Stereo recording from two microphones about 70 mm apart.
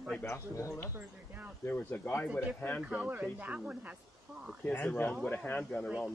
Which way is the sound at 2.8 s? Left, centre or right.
Right.